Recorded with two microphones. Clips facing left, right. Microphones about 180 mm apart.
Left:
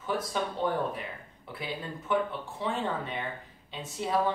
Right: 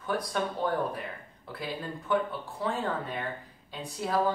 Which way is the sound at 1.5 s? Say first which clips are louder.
Right 1 dB; centre (ahead or behind).